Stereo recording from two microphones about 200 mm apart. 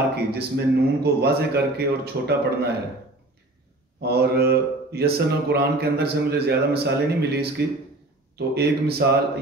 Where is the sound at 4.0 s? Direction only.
55° right (ahead or behind).